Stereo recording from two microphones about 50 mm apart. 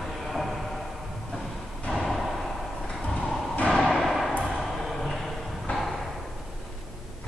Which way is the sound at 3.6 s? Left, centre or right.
Centre.